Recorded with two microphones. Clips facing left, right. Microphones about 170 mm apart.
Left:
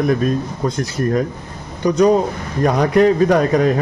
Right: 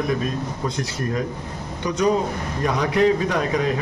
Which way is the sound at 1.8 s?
40° left (ahead or behind).